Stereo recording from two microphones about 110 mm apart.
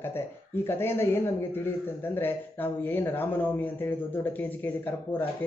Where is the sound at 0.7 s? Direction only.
20° left (ahead or behind).